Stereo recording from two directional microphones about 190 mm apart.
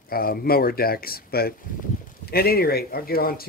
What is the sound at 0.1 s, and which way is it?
Speech, 50° left (ahead or behind).